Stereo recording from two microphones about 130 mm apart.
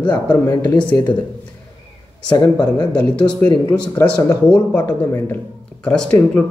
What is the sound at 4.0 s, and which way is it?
Speech, 20° left (ahead or behind).